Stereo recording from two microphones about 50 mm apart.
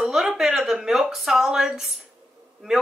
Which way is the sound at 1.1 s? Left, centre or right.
Centre.